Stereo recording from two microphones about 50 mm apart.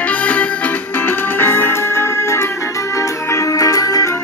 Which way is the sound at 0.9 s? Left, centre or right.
Left.